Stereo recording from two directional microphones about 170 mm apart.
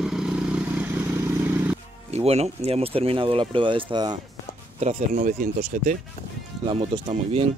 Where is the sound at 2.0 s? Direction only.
40° right (ahead or behind).